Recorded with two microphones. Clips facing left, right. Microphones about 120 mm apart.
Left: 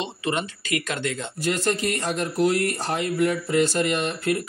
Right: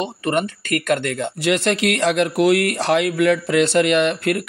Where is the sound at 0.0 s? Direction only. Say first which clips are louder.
Right 6 dB; 50° right (ahead or behind).